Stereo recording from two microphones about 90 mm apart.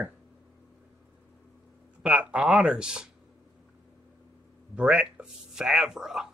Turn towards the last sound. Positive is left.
turn(degrees=-5)  # may be behind; listen again after turning